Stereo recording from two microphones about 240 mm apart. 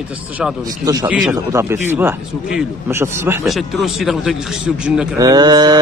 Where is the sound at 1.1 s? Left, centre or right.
Centre.